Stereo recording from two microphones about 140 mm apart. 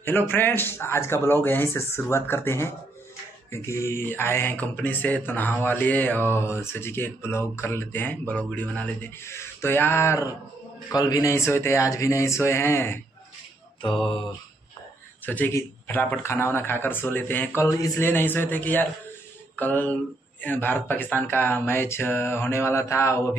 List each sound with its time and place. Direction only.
0.0 s speech: 15° left (ahead or behind)
15.2 s speech: 15° left (ahead or behind)